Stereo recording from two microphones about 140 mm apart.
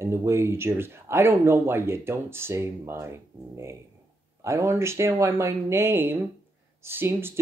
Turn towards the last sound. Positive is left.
turn(degrees=-15)  # may be behind; listen again after turning